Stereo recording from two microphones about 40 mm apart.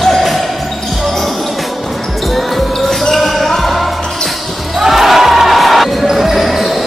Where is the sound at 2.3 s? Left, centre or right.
Centre.